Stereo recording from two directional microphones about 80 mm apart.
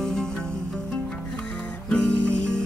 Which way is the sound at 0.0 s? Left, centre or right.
Centre.